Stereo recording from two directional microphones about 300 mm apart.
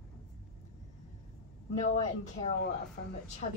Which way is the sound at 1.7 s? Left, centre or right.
Left.